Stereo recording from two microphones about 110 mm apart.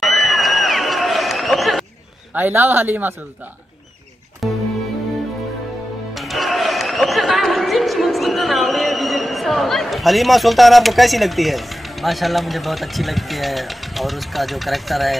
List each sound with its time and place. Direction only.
0.0 s a sound: centre (ahead or behind)
2.3 s a man's voice: 20° right (ahead or behind)
4.4 s music: centre (ahead or behind)
6.1 s music: centre (ahead or behind)